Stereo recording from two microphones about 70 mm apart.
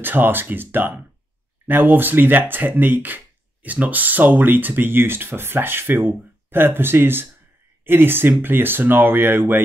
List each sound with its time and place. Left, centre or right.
0.0 s speech: right